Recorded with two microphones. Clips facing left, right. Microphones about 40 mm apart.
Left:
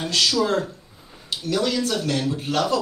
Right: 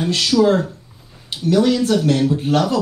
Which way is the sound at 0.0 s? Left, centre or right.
Right.